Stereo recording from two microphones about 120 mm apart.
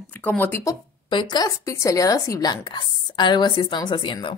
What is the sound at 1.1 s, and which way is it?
Speech, 35° left (ahead or behind).